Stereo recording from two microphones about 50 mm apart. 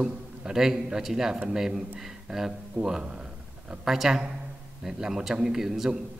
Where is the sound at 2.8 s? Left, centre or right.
Right.